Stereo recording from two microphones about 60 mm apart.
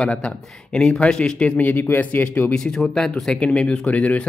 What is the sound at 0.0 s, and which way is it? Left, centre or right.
Speech, centre.